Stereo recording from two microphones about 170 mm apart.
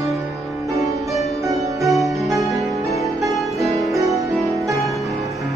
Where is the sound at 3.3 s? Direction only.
Centre (ahead or behind).